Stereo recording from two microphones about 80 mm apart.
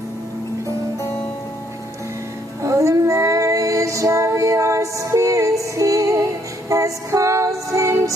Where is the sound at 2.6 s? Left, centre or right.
Right.